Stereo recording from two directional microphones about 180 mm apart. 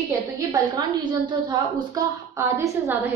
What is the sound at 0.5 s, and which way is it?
A woman's voice, 25° right (ahead or behind).